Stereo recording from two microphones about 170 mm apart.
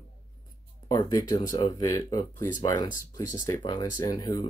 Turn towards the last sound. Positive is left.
turn(degrees=25)  # may be behind; listen again after turning